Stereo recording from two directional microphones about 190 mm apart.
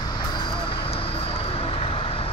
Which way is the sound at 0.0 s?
25° left (ahead or behind).